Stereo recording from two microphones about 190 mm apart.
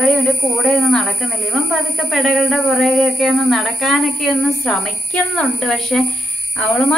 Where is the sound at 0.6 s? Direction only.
Centre (ahead or behind).